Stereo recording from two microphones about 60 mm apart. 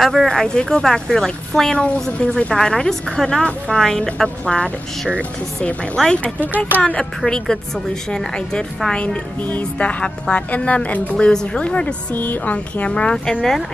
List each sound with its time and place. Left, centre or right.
0.0 s a woman's voice: centre
6.0 s speech: centre
7.2 s a woman's voice: centre